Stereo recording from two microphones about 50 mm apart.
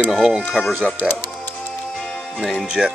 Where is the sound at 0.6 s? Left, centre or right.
Centre.